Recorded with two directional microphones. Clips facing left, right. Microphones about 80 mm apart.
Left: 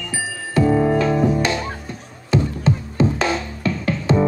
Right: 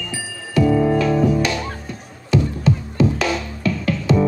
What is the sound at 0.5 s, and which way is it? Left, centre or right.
Music, left.